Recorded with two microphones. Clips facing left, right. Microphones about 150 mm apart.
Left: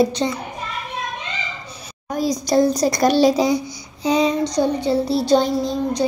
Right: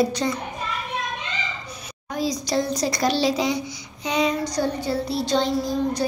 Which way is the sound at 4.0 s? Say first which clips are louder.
Left 5 dB; 35° left (ahead or behind).